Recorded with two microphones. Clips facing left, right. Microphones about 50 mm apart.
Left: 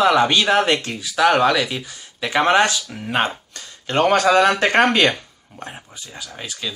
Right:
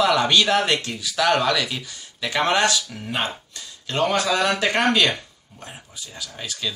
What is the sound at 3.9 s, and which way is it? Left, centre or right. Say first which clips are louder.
Speech: left 6 dB; left.